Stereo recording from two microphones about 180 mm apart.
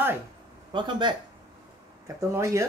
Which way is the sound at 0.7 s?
25° right (ahead or behind).